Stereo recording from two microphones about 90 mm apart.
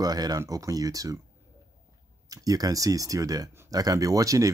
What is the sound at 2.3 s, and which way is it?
Speech, 45° right (ahead or behind).